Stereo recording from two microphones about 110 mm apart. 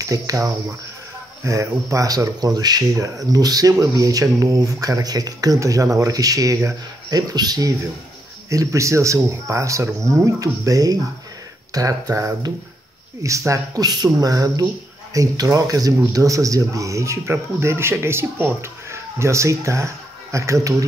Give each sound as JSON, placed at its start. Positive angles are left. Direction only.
{"t": 0.0, "sound": "speech", "side_deg": -30}